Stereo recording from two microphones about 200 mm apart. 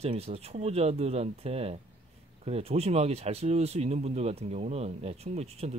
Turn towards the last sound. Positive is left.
turn(degrees=-30)  # may be behind; listen again after turning